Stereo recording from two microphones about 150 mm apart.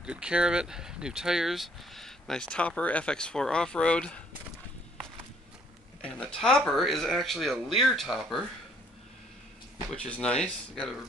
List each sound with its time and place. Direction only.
0.0 s speech: 5° right (ahead or behind)
6.0 s speech: 5° left (ahead or behind)
9.9 s speech: 10° left (ahead or behind)